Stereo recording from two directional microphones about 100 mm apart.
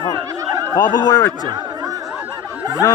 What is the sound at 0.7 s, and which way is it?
Speech, 45° left (ahead or behind).